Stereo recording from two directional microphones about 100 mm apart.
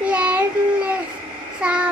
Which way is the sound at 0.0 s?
10° right (ahead or behind).